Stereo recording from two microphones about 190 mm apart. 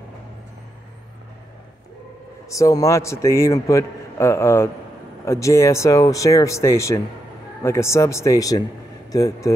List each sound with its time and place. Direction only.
2.5 s a man's voice: 15° left (ahead or behind)